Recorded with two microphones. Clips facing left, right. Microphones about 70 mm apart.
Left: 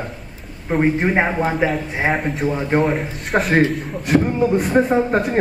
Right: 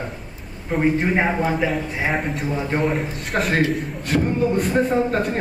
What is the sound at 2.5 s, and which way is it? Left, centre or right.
Speech, centre.